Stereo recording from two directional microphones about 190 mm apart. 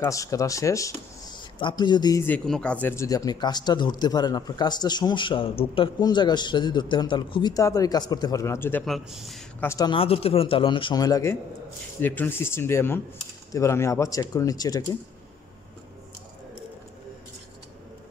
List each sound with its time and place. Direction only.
0.0 s speech: 15° left (ahead or behind)
2.2 s speech: 5° left (ahead or behind)
8.8 s a man's voice: centre (ahead or behind)
9.7 s speech: 20° left (ahead or behind)